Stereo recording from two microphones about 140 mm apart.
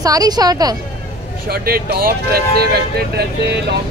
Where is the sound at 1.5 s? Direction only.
90° right.